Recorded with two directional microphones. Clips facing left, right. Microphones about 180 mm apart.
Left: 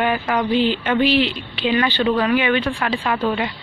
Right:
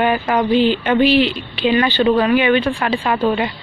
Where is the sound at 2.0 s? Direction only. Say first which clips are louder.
Right 5 dB; 25° right (ahead or behind).